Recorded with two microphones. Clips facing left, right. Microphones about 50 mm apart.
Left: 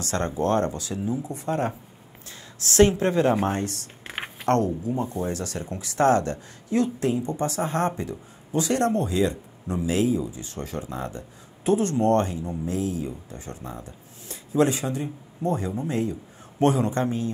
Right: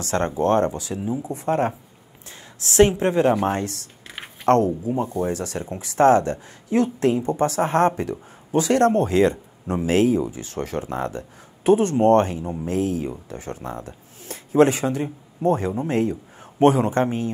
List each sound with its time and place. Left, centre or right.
0.1 s a woman's voice: right
1.4 s speech: right
2.8 s a woman's voice: right
3.6 s typing: left
4.5 s speech: right
7.0 s speech: right
7.2 s speech: right
9.9 s a man's voice: right